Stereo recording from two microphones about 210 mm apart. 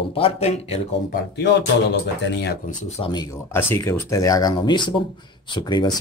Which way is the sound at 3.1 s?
15° left (ahead or behind).